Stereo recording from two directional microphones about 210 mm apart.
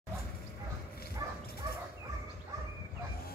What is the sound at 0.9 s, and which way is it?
Bow-wow, 45° left (ahead or behind).